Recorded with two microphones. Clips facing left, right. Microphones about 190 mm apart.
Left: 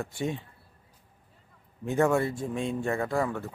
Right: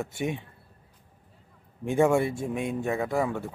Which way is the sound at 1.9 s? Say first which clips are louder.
Right 2 dB; 15° right (ahead or behind).